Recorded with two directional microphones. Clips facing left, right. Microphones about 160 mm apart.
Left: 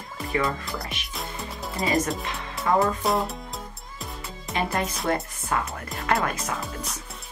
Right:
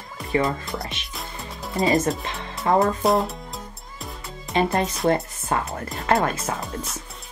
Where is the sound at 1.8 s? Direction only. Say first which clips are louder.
Right 4 dB; 25° right (ahead or behind).